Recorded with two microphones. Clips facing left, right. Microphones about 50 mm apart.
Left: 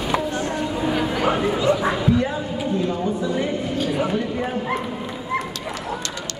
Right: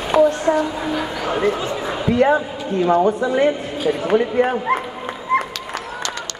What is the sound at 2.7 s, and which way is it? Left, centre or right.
Speech, right.